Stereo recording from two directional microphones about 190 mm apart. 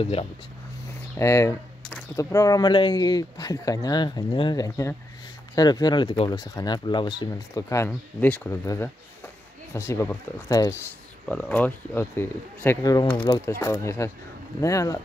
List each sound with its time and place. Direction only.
0.0 s speech: 30° left (ahead or behind)
1.1 s speech: 15° left (ahead or behind)
11.2 s speech: 5° left (ahead or behind)